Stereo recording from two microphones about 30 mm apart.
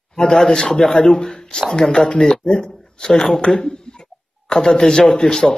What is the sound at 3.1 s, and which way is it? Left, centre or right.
Speech, centre.